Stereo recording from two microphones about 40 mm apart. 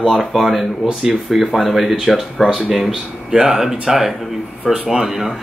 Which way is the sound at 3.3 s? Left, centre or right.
Centre.